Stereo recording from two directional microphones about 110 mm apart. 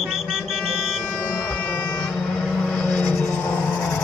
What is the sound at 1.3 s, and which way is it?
Vehicle, 15° left (ahead or behind).